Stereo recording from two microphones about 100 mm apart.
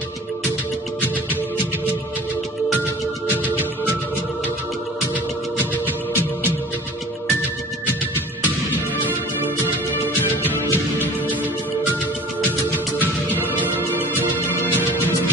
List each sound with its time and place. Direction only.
10.2 s music: 20° right (ahead or behind)
13.3 s music: 20° right (ahead or behind)